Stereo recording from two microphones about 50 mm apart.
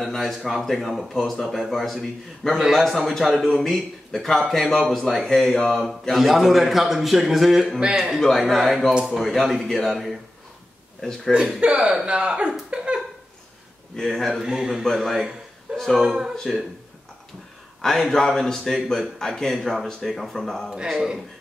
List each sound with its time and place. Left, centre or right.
0.0 s a man's voice: centre
5.8 s a man's voice: centre
11.3 s speech: centre
12.7 s a sound: centre
13.9 s a man's voice: centre
14.4 s a man's voice: centre
17.8 s a man's voice: centre
20.9 s a man's voice: centre